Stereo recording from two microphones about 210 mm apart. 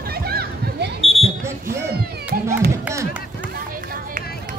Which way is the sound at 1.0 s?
30° left (ahead or behind).